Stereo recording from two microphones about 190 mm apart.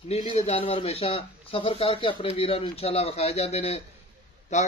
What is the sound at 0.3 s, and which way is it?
A man's voice, 30° left (ahead or behind).